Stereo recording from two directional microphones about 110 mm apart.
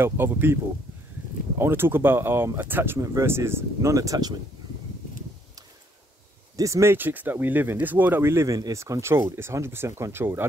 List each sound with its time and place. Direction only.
0.0 s speech: 20° right (ahead or behind)
1.6 s speech: 20° right (ahead or behind)
6.5 s speech: 30° right (ahead or behind)